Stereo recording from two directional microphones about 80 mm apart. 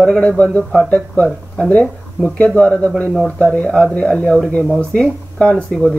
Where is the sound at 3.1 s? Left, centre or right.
Centre.